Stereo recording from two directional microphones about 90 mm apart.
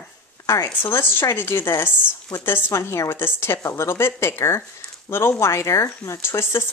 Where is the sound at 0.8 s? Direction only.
25° left (ahead or behind).